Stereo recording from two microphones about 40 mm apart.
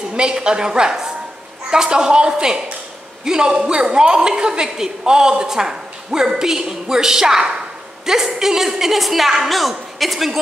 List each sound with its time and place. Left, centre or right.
0.1 s a woman's voice: right; by 10.4 s centre